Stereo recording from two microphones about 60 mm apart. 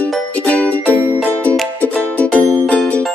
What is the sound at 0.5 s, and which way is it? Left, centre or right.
Music, left.